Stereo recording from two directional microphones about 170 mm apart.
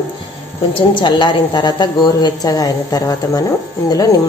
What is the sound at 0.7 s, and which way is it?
Speech, 30° left (ahead or behind).